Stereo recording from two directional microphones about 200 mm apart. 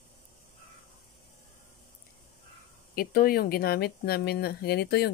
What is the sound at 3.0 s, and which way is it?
Speech, 45° left (ahead or behind).